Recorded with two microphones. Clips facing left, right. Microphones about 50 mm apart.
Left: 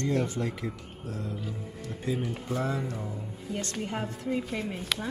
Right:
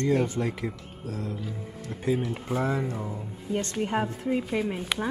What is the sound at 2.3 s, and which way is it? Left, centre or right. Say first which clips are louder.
Speech: right 3 dB; right.